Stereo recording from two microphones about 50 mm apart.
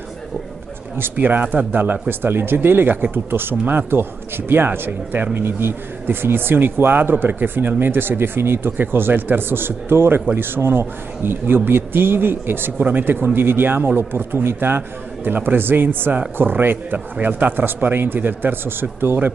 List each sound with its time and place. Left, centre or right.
0.9 s speech: right
1.2 s speech: right
5.3 s speech: right